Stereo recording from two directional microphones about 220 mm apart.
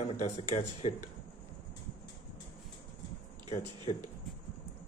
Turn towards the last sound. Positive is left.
turn(degrees=30)  # may be behind; listen again after turning